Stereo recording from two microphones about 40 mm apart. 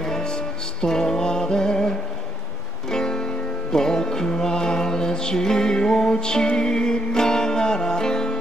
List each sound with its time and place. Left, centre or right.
0.0 s music: centre